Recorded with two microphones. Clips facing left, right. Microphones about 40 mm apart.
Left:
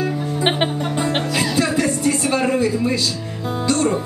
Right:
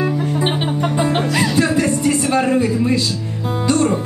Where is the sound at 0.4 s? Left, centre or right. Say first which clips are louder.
Left 5 dB; left.